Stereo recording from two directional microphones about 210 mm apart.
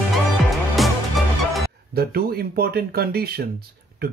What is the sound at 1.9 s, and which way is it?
Speech, 45° right (ahead or behind).